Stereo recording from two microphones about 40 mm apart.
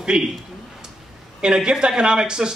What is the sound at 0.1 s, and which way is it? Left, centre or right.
Speech, centre.